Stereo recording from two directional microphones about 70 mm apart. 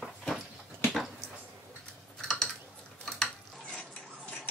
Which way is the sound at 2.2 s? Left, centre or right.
Centre.